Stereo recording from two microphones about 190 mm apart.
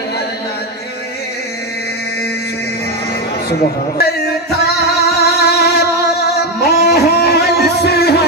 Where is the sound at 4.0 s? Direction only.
55° left (ahead or behind).